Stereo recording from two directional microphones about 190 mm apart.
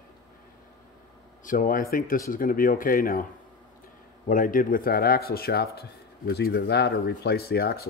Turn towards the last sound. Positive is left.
turn(degrees=55)  # may be behind; listen again after turning